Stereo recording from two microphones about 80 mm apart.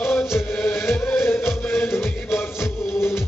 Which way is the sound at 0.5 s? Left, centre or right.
Centre.